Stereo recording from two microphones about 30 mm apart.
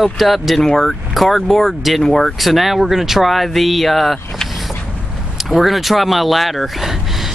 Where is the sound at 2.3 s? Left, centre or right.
Centre.